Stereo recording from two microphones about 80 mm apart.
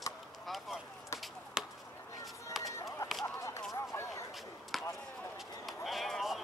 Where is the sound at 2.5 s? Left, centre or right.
Centre.